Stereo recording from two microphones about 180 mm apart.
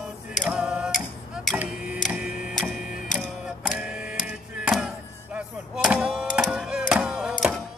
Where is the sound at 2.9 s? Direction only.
45° left (ahead or behind).